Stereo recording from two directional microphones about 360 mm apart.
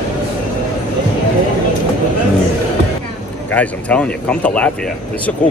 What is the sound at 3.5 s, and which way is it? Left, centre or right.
Speech, centre.